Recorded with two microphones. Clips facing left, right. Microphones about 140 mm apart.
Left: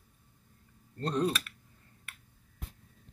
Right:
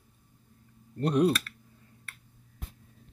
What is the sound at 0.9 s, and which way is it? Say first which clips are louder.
Speech: right 6 dB; 15° right (ahead or behind).